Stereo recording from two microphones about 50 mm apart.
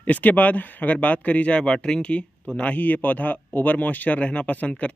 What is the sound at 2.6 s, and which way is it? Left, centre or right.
Speech, left.